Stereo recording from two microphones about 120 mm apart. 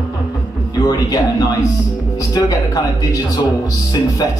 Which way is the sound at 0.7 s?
30° left (ahead or behind).